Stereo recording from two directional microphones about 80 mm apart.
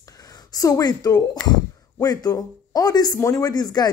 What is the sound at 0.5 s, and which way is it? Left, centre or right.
Speech, left.